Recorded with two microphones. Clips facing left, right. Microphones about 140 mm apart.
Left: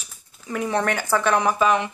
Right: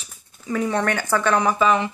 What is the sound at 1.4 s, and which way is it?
Speech, 5° left (ahead or behind).